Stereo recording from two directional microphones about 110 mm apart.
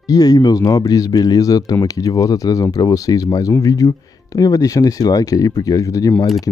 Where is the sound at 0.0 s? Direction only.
35° left (ahead or behind).